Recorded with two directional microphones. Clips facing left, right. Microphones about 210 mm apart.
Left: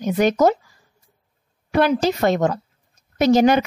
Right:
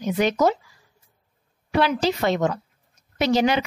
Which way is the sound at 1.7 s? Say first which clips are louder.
Left 3 dB; 50° left (ahead or behind).